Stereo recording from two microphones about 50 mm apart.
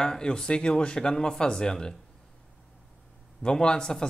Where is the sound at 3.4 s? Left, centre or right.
Centre.